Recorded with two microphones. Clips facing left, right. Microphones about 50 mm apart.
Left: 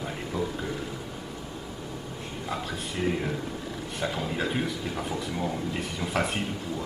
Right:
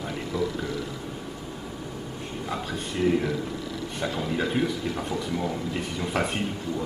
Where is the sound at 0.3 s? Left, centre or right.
Left.